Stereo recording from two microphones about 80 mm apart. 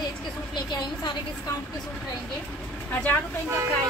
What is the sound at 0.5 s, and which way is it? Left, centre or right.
Speech, left.